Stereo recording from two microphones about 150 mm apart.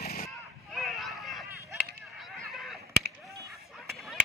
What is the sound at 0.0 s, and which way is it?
Artillery fire, 85° left.